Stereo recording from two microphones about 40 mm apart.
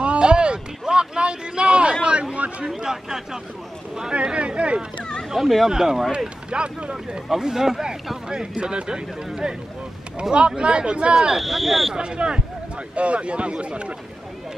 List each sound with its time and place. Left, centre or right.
0.0 s a sound: right
2.6 s speech: centre
4.1 s speech: right
5.4 s speech: centre
5.7 s speech: centre
6.1 s speech: right
7.2 s speech: centre
8.3 s speech: right
11.2 s speech: centre
11.9 s speech: right